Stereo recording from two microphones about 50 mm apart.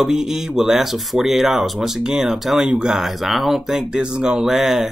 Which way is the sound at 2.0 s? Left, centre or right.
Centre.